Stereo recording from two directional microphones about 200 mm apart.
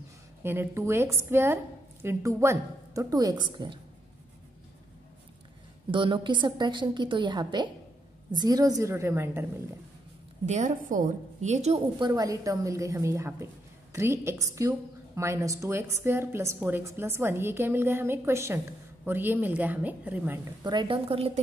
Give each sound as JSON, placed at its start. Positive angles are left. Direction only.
{"t": 0.4, "sound": "a woman's voice", "side_deg": -10}
{"t": 5.9, "sound": "a woman's voice", "side_deg": -25}
{"t": 10.4, "sound": "a woman's voice", "side_deg": -35}
{"t": 12.0, "sound": "a woman's voice", "side_deg": -15}
{"t": 20.6, "sound": "a woman's voice", "side_deg": -25}